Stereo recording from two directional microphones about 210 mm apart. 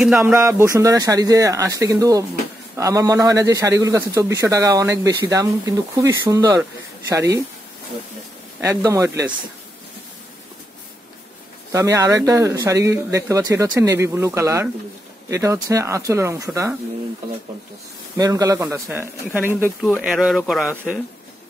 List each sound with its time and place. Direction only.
0.0 s speech: centre (ahead or behind)
0.4 s a man's voice: 15° right (ahead or behind)
8.5 s a man's voice: 10° right (ahead or behind)
11.7 s a man's voice: 15° right (ahead or behind)
18.1 s a man's voice: 15° right (ahead or behind)